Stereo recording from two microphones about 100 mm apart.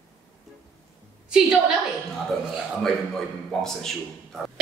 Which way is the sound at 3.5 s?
5° left (ahead or behind).